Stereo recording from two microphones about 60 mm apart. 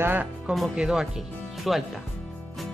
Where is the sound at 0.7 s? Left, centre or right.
Centre.